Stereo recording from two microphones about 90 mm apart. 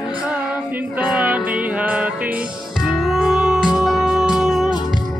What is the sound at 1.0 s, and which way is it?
Music, 15° right (ahead or behind).